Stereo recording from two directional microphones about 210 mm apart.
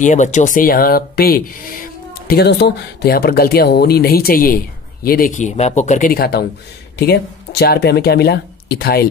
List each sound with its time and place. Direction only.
0.0 s speech: 35° left (ahead or behind)